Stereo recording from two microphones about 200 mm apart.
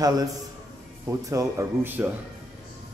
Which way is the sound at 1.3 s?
15° right (ahead or behind).